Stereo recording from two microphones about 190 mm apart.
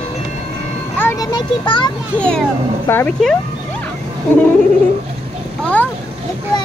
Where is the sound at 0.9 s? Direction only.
15° left (ahead or behind).